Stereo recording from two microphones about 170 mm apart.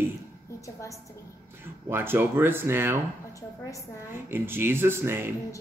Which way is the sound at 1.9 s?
15° right (ahead or behind).